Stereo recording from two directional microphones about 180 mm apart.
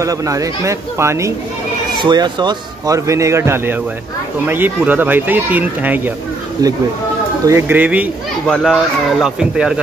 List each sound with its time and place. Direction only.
0.0 s speech: 20° right (ahead or behind)
6.6 s speech: 20° right (ahead or behind); by 9.8 s 5° right (ahead or behind)